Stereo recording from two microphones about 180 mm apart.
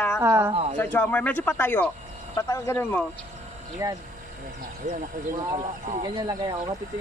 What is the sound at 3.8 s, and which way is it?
Speech, 15° right (ahead or behind).